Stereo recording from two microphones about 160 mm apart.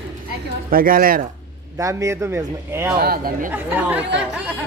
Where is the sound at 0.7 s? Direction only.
65° right (ahead or behind).